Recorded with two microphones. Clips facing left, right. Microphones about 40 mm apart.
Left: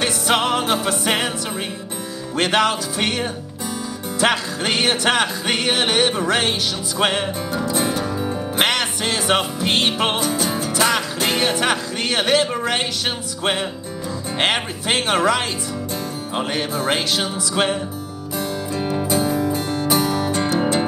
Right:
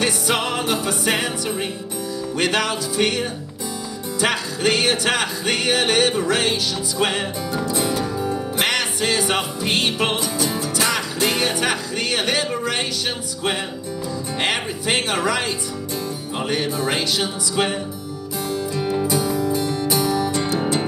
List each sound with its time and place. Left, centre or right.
0.0 s music: left
2.5 s music: left
8.6 s music: left
14.4 s music: left
16.4 s music: left
19.0 s music: left